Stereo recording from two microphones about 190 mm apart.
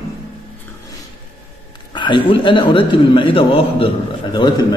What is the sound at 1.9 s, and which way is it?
A man's voice, 25° left (ahead or behind).